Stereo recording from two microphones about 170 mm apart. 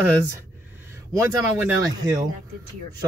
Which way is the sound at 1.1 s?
15° right (ahead or behind).